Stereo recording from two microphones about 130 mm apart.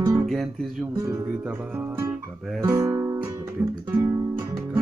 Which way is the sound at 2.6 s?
25° right (ahead or behind).